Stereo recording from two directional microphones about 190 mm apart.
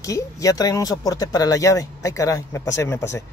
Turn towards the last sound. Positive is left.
turn(degrees=15)  # may be behind; listen again after turning